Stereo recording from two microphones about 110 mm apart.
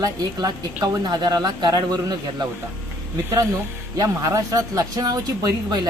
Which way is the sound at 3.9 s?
35° right (ahead or behind).